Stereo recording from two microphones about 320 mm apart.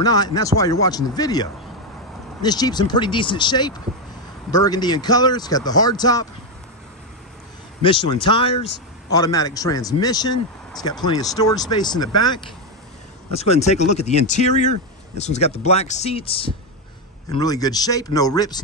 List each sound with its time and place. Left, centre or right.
0.0 s speech: centre
7.8 s speech: centre
13.3 s speech: centre